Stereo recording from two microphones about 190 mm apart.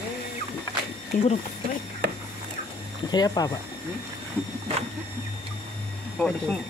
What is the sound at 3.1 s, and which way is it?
Speech, 20° left (ahead or behind).